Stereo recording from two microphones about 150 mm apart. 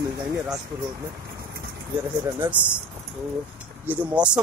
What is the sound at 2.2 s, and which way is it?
Speech, 15° right (ahead or behind).